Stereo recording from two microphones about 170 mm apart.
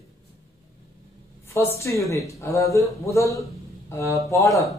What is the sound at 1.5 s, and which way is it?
A man's voice, 15° left (ahead or behind).